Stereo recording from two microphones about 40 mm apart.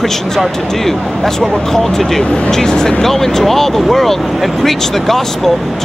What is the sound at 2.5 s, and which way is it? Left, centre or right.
Speech, centre.